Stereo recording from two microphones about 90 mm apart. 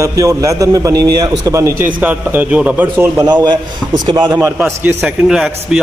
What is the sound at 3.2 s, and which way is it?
A man's voice, 45° right (ahead or behind).